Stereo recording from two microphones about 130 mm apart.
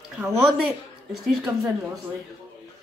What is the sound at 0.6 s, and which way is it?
Speech, 5° right (ahead or behind).